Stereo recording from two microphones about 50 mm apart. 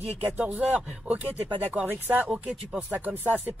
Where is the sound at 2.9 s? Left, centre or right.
Right.